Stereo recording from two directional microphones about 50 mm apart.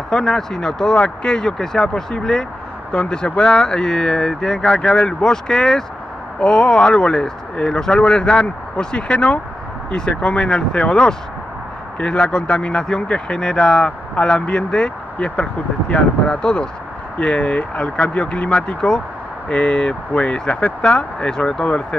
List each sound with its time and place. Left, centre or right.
0.1 s speech: centre